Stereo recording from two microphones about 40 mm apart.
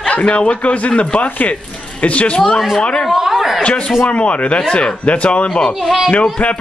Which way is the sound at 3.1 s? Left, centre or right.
Centre.